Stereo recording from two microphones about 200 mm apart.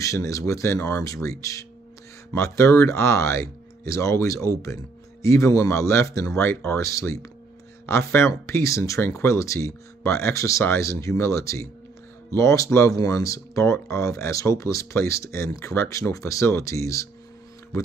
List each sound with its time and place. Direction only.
0.0 s speech: 15° left (ahead or behind)